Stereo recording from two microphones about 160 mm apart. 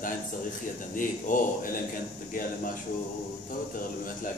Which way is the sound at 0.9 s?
60° left (ahead or behind).